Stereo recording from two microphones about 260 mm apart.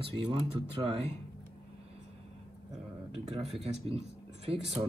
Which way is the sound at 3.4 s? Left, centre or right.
Right.